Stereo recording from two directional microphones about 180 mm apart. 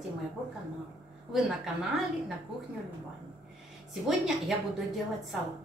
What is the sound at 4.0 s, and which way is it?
Speech, centre (ahead or behind).